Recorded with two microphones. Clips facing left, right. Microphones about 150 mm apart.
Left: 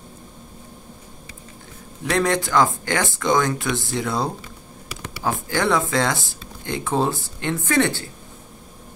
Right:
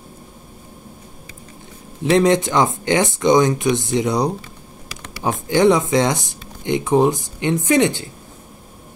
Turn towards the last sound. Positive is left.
turn(degrees=-20)  # may be behind; listen again after turning